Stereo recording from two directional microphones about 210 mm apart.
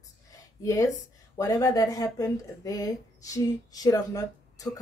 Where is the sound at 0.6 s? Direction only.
15° left (ahead or behind).